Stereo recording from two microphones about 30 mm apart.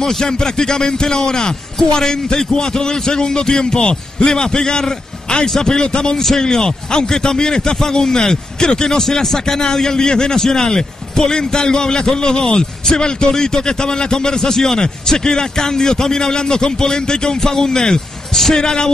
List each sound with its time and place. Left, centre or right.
0.0 s a man's voice: left